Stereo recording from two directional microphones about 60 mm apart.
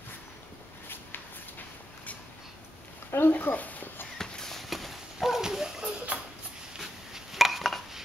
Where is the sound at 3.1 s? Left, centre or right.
Left.